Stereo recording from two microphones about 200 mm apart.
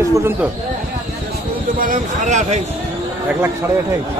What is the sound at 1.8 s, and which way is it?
Speech, 45° right (ahead or behind).